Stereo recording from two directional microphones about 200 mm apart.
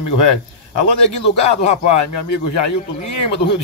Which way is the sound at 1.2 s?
30° left (ahead or behind).